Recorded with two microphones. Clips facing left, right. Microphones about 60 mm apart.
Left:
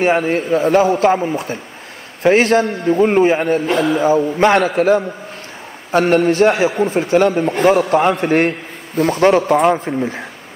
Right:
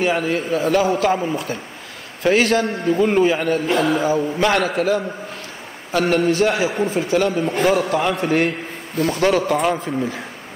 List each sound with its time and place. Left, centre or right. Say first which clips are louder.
0.0 s a man's voice: left 4 dB; left